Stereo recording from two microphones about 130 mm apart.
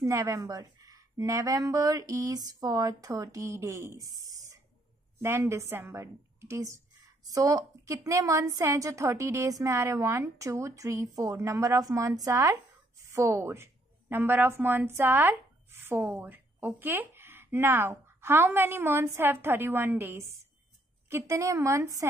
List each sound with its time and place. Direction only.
0.0 s a woman's voice: 25° right (ahead or behind)